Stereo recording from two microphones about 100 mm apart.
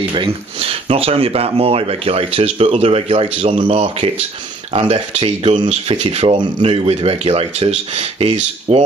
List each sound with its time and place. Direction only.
0.1 s speech: 65° right (ahead or behind)
4.7 s speech: 75° right (ahead or behind)
6.3 s speech: 50° right (ahead or behind); by 8.8 s 75° right (ahead or behind)